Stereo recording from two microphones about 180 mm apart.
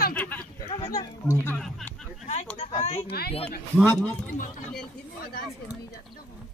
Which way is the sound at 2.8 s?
40° left (ahead or behind).